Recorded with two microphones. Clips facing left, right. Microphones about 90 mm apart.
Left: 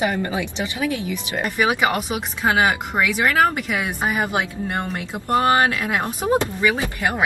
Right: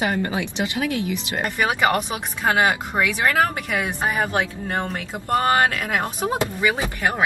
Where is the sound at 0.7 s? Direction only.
20° left (ahead or behind).